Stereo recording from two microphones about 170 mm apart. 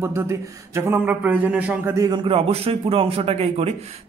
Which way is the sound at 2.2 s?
35° right (ahead or behind).